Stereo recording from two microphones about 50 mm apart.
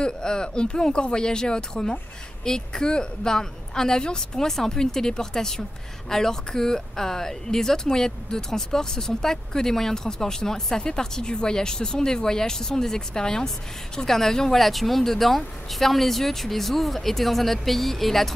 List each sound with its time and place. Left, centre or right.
0.0 s speech: centre